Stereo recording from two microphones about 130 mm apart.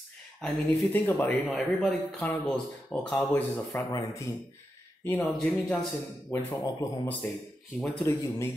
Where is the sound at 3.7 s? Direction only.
25° left (ahead or behind).